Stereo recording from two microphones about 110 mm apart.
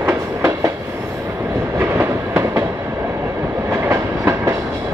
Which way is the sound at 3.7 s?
20° right (ahead or behind).